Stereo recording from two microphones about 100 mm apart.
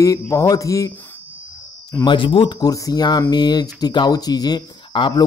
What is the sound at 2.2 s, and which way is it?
Speech, 60° left (ahead or behind).